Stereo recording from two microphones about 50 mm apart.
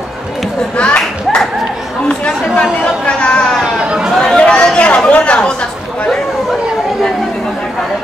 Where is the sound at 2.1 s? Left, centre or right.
Left.